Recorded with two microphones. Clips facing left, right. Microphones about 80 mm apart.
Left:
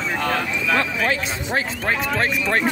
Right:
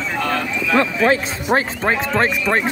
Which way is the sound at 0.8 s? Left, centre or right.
Right.